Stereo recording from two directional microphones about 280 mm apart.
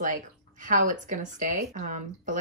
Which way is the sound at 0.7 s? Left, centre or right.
Right.